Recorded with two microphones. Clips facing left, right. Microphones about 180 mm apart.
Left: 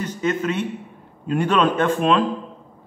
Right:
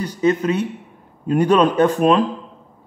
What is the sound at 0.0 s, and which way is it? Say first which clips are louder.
A man's voice: right 5 dB; 35° right (ahead or behind).